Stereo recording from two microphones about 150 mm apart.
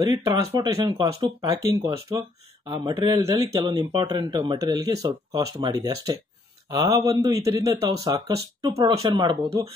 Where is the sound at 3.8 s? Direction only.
35° right (ahead or behind).